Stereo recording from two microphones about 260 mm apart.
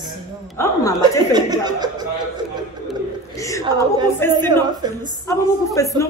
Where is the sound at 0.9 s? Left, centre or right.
Centre.